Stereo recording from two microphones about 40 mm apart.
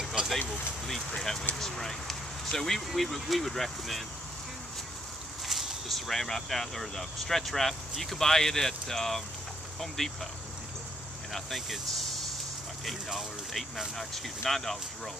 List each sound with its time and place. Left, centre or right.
0.2 s a sound: right
1.1 s speech: centre
5.4 s speech: centre
11.3 s speech: centre
13.9 s speech: centre